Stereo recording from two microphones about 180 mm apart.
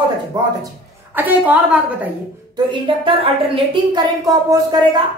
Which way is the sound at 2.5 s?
25° right (ahead or behind).